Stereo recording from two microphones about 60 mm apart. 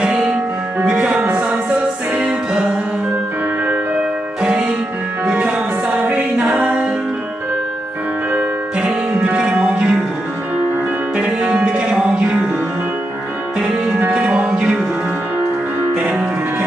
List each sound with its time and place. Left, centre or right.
0.0 s music: centre
4.4 s music: centre
8.7 s music: centre
11.1 s music: centre
13.6 s music: centre
16.0 s music: right